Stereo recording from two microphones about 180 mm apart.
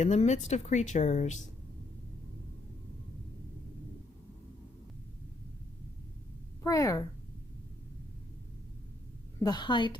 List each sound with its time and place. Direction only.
0.0 s speech: 40° left (ahead or behind)
6.6 s a woman's voice: 20° left (ahead or behind)
9.4 s a woman's voice: 25° left (ahead or behind)